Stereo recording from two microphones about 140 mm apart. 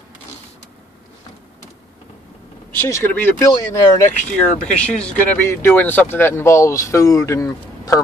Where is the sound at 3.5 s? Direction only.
30° left (ahead or behind).